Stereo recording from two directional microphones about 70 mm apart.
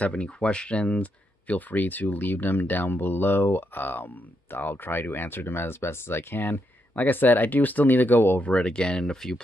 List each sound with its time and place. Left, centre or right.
0.0 s speech: centre